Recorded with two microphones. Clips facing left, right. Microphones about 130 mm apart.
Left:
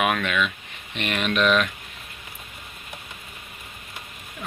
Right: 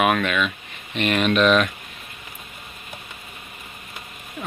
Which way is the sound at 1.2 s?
15° right (ahead or behind).